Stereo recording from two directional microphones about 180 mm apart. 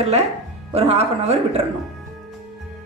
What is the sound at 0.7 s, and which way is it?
Speech, 35° right (ahead or behind).